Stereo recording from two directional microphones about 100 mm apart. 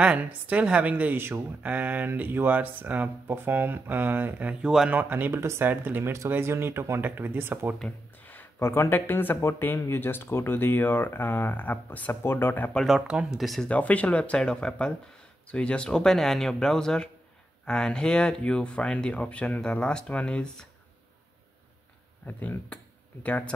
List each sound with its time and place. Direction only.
0.0 s a woman's voice: 10° right (ahead or behind)
8.3 s speech: 20° left (ahead or behind)
12.7 s speech: centre (ahead or behind)
13.7 s speech: 15° left (ahead or behind)
22.2 s speech: 15° left (ahead or behind)